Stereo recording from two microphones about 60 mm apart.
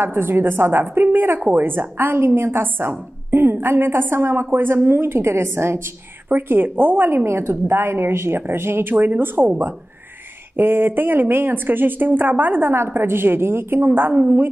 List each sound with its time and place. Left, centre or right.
0.0 s a woman's voice: right
6.2 s a woman's voice: right
8.9 s a woman's voice: right
10.5 s a woman's voice: right
14.1 s a woman's voice: right